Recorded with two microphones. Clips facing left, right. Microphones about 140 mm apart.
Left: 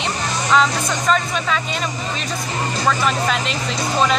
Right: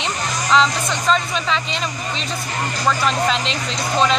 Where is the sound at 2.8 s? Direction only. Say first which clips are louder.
Right 1 dB; centre (ahead or behind).